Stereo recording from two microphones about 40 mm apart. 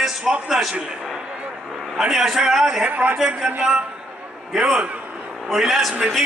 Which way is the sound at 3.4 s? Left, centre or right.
Centre.